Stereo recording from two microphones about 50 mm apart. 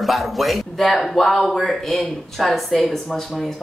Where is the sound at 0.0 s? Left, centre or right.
Centre.